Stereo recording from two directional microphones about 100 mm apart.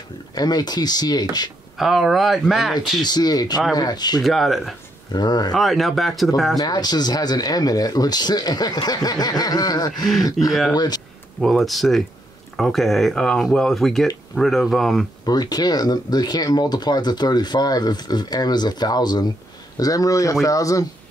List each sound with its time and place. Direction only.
0.3 s speech: 40° left (ahead or behind)
1.8 s speech: centre (ahead or behind)
3.0 s speech: 45° left (ahead or behind)
4.2 s speech: centre (ahead or behind)
5.1 s speech: 45° left (ahead or behind)
5.5 s speech: centre (ahead or behind)
6.6 s speech: 45° left (ahead or behind)
10.4 s speech: centre (ahead or behind)
10.7 s speech: 40° left (ahead or behind)
11.4 s speech: centre (ahead or behind)
15.2 s speech: 40° left (ahead or behind)